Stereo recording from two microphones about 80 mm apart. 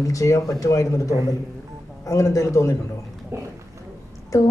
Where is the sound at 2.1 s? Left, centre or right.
Left.